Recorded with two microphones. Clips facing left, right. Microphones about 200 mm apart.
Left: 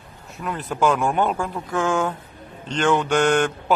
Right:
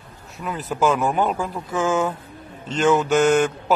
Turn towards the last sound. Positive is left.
turn(degrees=-5)  # may be behind; listen again after turning